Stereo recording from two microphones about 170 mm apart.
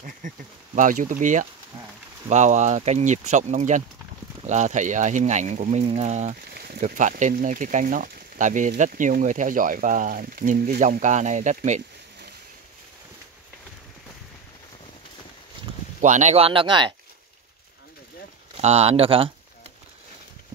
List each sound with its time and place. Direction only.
0.2 s speech: 50° right (ahead or behind)
6.5 s a sound: 65° right (ahead or behind)
6.8 s speech: 45° right (ahead or behind)
16.0 s speech: 45° right (ahead or behind); by 16.9 s 30° right (ahead or behind)
18.6 s speech: 35° right (ahead or behind)